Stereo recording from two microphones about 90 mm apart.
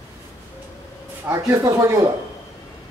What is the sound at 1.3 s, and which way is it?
Speech, 35° right (ahead or behind).